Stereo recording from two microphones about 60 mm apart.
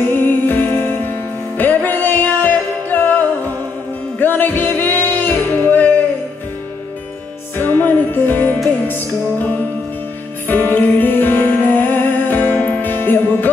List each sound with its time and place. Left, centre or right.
0.0 s music: left
7.5 s music: left